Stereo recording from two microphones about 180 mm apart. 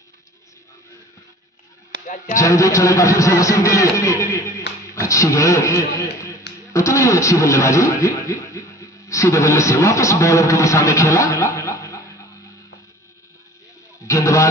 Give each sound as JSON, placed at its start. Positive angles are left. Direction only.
{"t": 2.0, "sound": "speech", "side_deg": 45}
{"t": 2.3, "sound": "a man's voice", "side_deg": 15}
{"t": 14.0, "sound": "music", "side_deg": 15}